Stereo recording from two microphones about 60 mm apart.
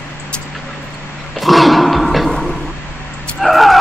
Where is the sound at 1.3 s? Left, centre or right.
Centre.